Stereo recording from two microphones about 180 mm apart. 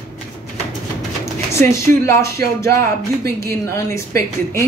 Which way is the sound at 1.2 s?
15° left (ahead or behind).